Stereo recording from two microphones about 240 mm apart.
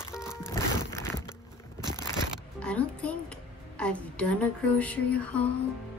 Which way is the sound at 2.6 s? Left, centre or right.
Centre.